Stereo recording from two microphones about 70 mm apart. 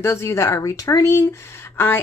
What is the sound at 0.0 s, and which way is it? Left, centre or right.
Speech, left.